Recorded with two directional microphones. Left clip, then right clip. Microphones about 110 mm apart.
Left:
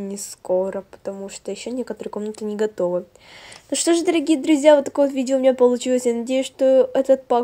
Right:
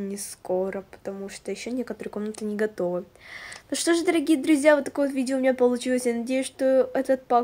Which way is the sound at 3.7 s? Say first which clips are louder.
Left 4 dB; 25° left (ahead or behind).